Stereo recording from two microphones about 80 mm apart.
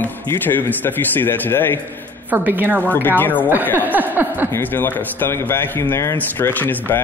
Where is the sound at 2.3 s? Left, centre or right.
Right.